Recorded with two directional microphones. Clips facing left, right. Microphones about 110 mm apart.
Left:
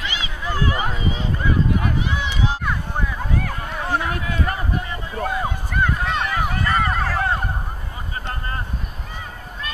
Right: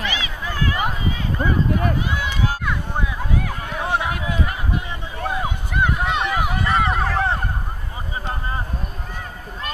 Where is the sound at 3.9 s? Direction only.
15° right (ahead or behind).